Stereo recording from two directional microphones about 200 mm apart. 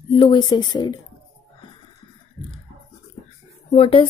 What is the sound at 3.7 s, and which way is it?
Speech, 30° left (ahead or behind).